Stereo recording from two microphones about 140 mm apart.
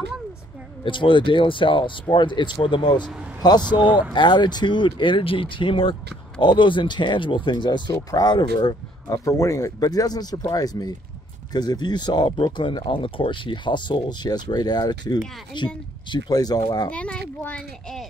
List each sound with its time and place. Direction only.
0.8 s speech: 35° left (ahead or behind)
3.6 s speech: 10° right (ahead or behind)
4.1 s speech: 35° left (ahead or behind)
16.9 s a child's voice: 10° left (ahead or behind)